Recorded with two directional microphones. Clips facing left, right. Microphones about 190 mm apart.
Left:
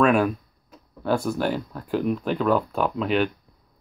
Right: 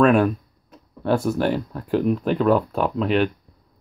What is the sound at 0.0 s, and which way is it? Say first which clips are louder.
Speech: right 3 dB; centre (ahead or behind).